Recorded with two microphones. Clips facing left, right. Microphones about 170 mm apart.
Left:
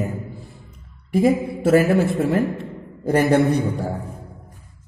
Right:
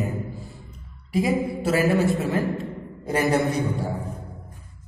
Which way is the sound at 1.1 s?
55° left (ahead or behind).